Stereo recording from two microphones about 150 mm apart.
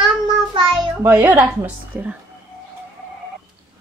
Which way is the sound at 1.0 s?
15° right (ahead or behind).